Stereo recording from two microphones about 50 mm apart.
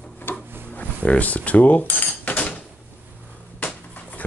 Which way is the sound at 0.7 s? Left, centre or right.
Left.